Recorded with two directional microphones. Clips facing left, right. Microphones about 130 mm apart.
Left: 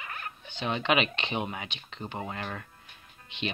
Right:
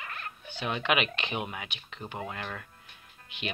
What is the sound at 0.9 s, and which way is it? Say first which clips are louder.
Speech: left 2 dB; 5° right (ahead or behind).